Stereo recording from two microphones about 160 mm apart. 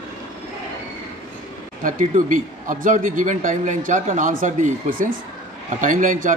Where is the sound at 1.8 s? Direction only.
55° right (ahead or behind).